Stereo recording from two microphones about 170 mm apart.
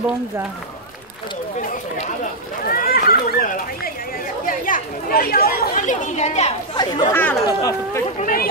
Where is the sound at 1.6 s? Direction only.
50° left (ahead or behind).